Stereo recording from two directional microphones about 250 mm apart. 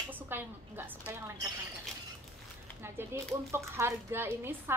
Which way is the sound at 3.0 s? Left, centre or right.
Centre.